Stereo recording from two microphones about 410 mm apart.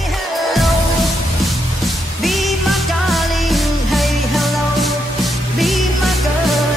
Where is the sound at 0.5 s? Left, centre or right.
Centre.